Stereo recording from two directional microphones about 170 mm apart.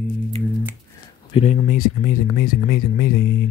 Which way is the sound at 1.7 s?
55° left (ahead or behind).